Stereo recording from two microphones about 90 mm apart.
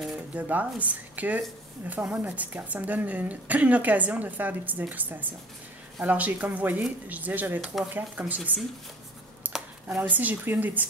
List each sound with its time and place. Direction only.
0.3 s a woman's voice: 15° right (ahead or behind)
9.5 s a sound: 20° right (ahead or behind)
9.8 s a woman's voice: 20° right (ahead or behind)